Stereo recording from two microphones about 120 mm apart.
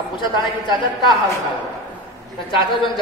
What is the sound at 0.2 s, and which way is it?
Speech, 40° left (ahead or behind).